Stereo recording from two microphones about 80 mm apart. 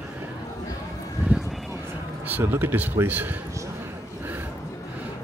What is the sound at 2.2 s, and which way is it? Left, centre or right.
Speech, right.